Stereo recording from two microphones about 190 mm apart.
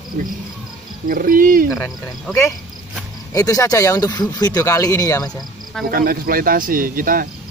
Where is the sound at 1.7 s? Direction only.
5° left (ahead or behind).